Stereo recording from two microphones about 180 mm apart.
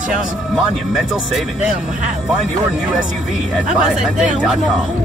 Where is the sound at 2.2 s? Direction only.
Centre (ahead or behind).